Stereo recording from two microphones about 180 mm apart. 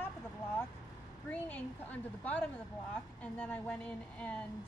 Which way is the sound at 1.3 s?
10° left (ahead or behind).